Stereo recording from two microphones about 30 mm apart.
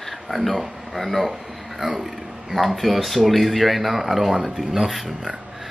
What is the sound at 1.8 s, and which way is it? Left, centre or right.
Speech, centre.